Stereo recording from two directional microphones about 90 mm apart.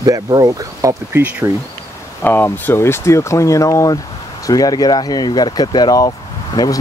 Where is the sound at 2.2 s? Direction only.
25° left (ahead or behind).